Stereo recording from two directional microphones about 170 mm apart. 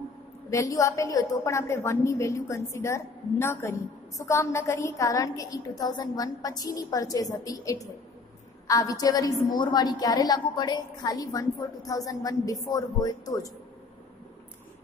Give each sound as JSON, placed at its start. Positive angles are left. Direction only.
{"t": 0.5, "sound": "a woman's voice", "side_deg": 20}